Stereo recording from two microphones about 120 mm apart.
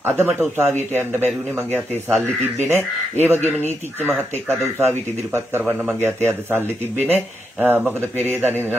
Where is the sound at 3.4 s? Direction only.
15° left (ahead or behind).